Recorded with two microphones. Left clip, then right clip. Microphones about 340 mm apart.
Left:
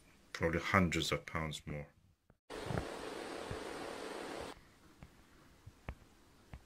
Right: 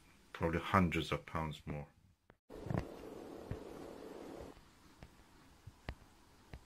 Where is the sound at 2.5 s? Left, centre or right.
Left.